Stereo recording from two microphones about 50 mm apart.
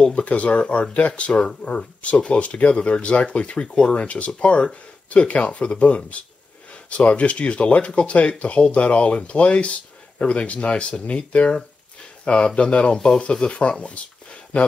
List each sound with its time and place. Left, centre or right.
0.0 s speech: left